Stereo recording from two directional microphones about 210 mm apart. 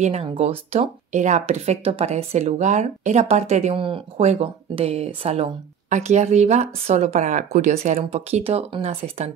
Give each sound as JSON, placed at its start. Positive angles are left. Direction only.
{"t": 0.0, "sound": "speech", "side_deg": -30}